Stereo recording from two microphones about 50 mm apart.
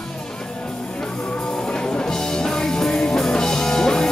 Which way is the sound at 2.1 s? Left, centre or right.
Centre.